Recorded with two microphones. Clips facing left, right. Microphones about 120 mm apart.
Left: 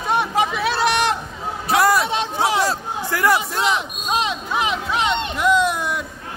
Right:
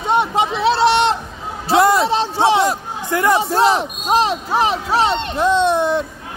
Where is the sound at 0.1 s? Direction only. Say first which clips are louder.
Right 3 dB; 25° right (ahead or behind).